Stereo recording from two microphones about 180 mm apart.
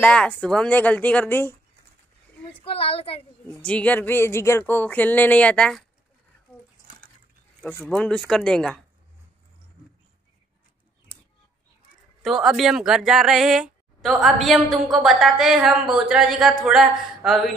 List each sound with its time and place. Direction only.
0.0 s speech: 5° left (ahead or behind)
2.6 s a woman's voice: 30° left (ahead or behind)
3.4 s speech: 5° left (ahead or behind)
7.6 s a woman's voice: 5° left (ahead or behind)
12.2 s a woman's voice: centre (ahead or behind)